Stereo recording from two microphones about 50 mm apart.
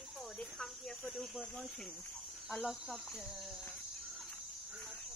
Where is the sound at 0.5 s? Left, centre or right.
Centre.